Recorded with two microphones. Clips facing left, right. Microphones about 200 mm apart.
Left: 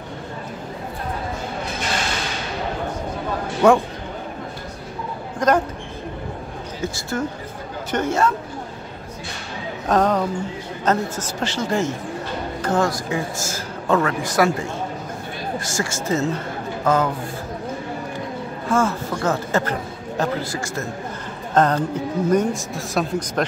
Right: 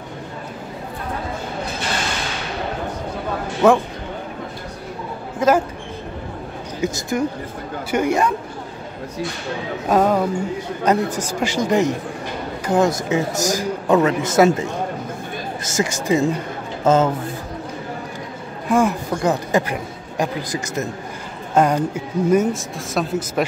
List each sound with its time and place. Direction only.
3.6 s a man's voice: centre (ahead or behind)
5.4 s a sound: 5° right (ahead or behind)
6.8 s a woman's voice: 15° right (ahead or behind)
9.8 s a woman's voice: 10° right (ahead or behind); by 17.1 s 25° right (ahead or behind)
18.7 s a man's voice: 15° right (ahead or behind)